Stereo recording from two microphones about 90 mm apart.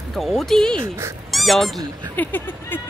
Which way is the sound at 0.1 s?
5° left (ahead or behind).